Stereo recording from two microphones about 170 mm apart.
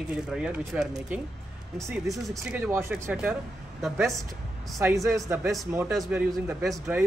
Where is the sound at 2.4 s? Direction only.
15° right (ahead or behind).